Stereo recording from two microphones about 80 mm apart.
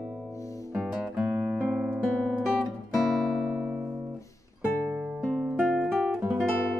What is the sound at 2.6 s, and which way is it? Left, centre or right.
Music, centre.